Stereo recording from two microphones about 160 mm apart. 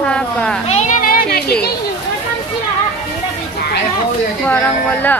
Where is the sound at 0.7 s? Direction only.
45° left (ahead or behind); by 1.4 s 70° left (ahead or behind).